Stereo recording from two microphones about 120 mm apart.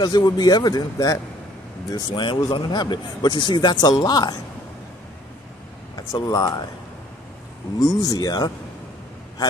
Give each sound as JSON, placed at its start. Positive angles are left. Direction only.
{"t": 0.0, "sound": "a man's voice", "side_deg": 35}
{"t": 2.1, "sound": "a man's voice", "side_deg": 40}
{"t": 5.9, "sound": "a man's voice", "side_deg": 30}
{"t": 7.8, "sound": "a man's voice", "side_deg": 30}